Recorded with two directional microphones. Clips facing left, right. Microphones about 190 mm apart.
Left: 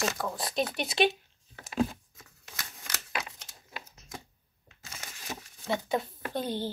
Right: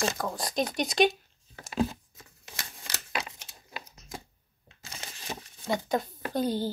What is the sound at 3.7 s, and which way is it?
Typewriter, 30° right (ahead or behind).